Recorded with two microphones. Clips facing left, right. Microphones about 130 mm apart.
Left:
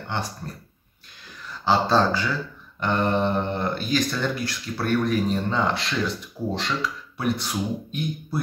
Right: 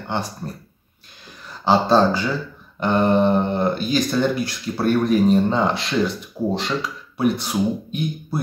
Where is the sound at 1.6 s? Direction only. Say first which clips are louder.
Right 4 dB; 20° right (ahead or behind).